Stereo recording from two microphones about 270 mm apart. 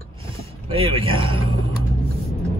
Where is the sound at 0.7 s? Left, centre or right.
Centre.